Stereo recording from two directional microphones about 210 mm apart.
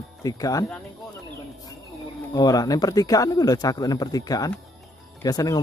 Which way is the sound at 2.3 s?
20° left (ahead or behind).